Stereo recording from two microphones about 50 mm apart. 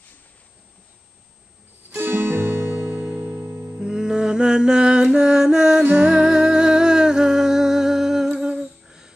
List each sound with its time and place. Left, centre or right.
1.9 s guitar: right
2.9 s music: right
3.8 s mantra: centre
5.9 s music: centre
8.5 s humming: centre